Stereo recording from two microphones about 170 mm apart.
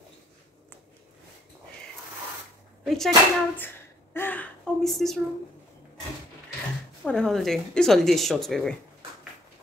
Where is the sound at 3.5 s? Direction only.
10° left (ahead or behind).